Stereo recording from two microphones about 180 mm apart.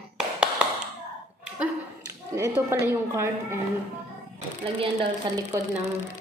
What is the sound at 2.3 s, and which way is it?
A woman's voice, 15° right (ahead or behind).